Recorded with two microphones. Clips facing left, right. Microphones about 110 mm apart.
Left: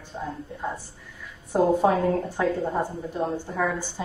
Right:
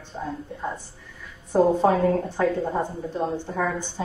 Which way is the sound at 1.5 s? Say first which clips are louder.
Right 1 dB; 5° left (ahead or behind).